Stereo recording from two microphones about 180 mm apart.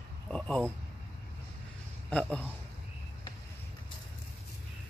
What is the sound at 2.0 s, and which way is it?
Speech, 5° left (ahead or behind).